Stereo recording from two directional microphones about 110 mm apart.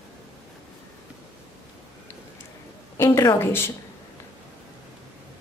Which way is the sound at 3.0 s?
30° left (ahead or behind).